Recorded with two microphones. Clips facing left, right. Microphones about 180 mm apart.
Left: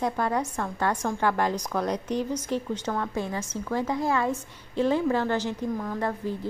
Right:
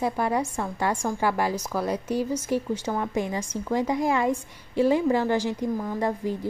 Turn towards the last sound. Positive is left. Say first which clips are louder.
# right 2 dB
turn(degrees=-15)  # may be behind; listen again after turning